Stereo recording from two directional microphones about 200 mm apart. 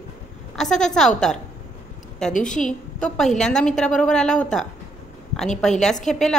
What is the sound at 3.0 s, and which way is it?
A woman's voice, centre (ahead or behind).